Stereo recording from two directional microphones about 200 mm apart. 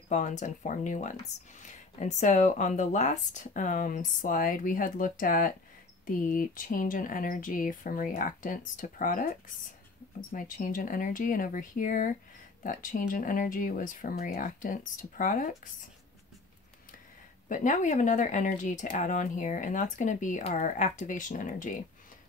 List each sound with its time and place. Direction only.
0.1 s speech: 35° left (ahead or behind)
17.5 s speech: 40° left (ahead or behind)